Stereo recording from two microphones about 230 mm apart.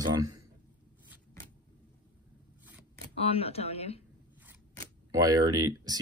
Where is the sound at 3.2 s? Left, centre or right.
Left.